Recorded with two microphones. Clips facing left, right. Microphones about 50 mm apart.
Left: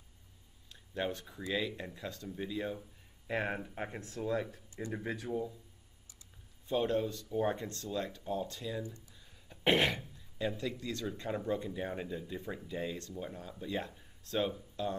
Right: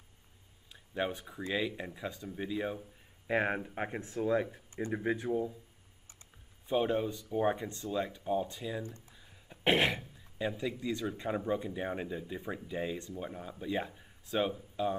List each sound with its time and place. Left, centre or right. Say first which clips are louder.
0.7 s speech: right 2 dB; centre
5.3 s speech: right 4 dB; centre
6.7 s speech: right 2 dB; centre
8.8 s speech: right 1 dB; right
9.1 s speech: right 2 dB; centre